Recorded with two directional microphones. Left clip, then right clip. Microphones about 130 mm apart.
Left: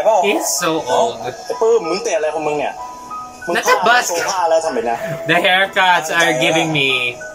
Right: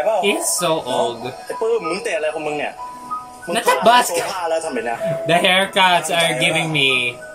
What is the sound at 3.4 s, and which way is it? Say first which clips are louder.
Speech: left 1 dB; 20° right (ahead or behind).